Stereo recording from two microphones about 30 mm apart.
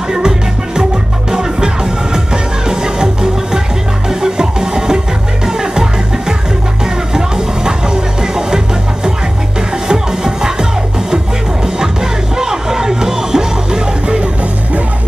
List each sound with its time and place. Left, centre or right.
2.7 s music: right
9.8 s music: right
12.4 s music: centre